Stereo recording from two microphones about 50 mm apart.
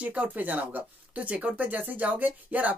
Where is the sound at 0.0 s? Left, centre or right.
Right.